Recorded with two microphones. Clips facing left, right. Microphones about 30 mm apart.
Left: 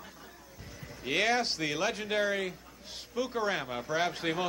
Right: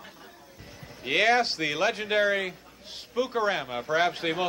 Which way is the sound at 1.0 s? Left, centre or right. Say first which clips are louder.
Right 6 dB; centre.